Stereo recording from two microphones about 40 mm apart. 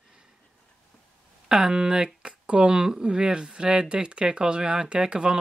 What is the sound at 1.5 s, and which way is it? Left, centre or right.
Speech, centre.